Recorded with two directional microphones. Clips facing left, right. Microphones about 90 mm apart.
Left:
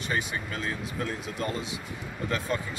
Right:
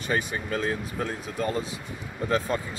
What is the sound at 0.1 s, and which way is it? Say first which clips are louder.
Speech: right 4 dB; 40° right (ahead or behind).